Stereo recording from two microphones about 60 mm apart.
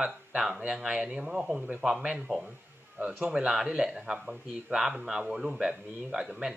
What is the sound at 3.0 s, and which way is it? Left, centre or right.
Speech, right.